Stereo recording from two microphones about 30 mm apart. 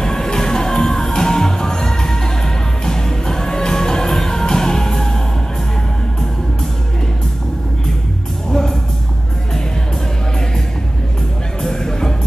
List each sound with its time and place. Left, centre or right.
0.0 s music: centre
8.5 s music: centre
11.6 s a sound: centre